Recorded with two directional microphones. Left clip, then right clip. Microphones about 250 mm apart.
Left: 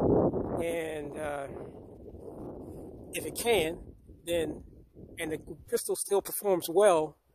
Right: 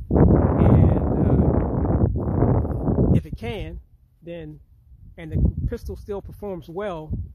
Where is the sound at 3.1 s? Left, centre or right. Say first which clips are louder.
Left 1 dB; left.